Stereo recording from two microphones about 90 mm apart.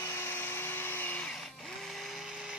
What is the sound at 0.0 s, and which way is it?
Vacuum cleaner, 30° left (ahead or behind).